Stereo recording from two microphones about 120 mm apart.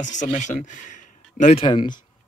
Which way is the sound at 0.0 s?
90° left.